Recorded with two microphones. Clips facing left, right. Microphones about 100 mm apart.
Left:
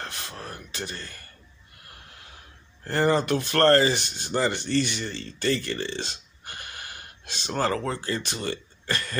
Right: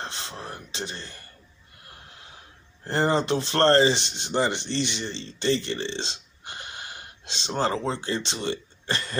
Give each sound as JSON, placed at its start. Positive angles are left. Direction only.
{"t": 0.0, "sound": "speech", "side_deg": -25}
{"t": 2.8, "sound": "speech", "side_deg": -25}